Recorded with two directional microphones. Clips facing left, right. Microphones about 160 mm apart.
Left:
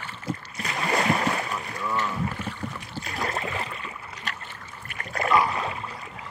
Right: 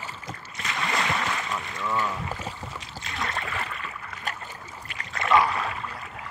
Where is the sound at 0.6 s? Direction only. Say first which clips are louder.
Left 4 dB; 35° left (ahead or behind).